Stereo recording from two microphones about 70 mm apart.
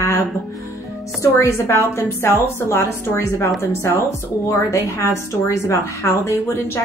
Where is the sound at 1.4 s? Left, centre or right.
Left.